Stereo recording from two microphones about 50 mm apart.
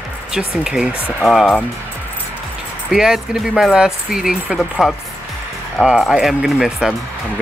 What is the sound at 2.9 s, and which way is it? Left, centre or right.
Speech, centre.